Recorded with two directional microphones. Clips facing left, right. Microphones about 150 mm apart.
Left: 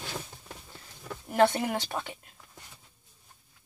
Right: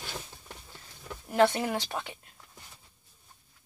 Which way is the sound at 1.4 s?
45° left (ahead or behind).